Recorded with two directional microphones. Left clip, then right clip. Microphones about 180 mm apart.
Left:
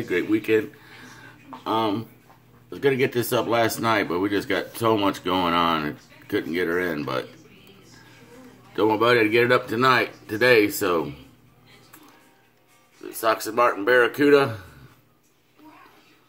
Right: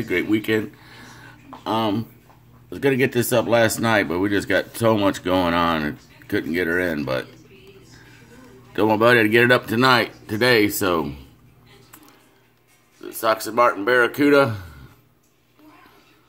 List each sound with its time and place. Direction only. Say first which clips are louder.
0.3 s a sound: even; 30° right (ahead or behind)
2.7 s speech: right 2 dB; 30° right (ahead or behind)
8.7 s speech: right 3 dB; 30° right (ahead or behind)
13.0 s speech: right 2 dB; 35° right (ahead or behind)